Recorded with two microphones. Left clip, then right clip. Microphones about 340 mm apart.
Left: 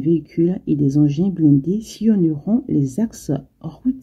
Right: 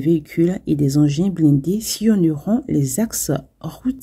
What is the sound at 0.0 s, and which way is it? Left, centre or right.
Speech, right.